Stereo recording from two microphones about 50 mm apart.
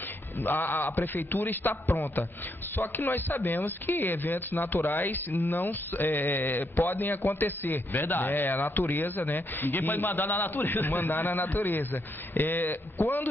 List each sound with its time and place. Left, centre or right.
0.4 s a man's voice: left